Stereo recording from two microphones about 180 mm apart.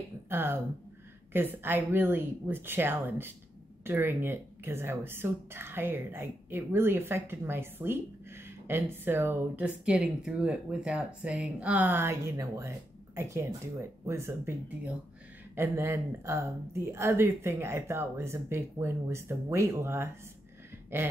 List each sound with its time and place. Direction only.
0.3 s speech: 15° right (ahead or behind)
15.5 s speech: 15° right (ahead or behind)